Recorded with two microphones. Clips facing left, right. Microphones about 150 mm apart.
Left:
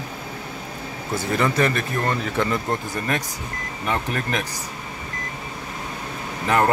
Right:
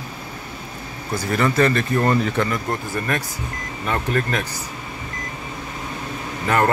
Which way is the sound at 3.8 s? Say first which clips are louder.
Right 3 dB; 10° left (ahead or behind).